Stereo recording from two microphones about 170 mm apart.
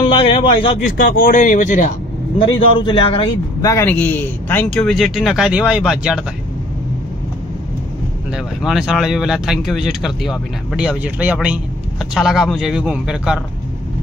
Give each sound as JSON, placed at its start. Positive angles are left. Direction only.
{"t": 0.0, "sound": "a man's voice", "side_deg": 30}
{"t": 1.0, "sound": "speech", "side_deg": 50}
{"t": 2.3, "sound": "a man's voice", "side_deg": 30}
{"t": 3.6, "sound": "a man's voice", "side_deg": 15}
{"t": 8.6, "sound": "speech", "side_deg": -5}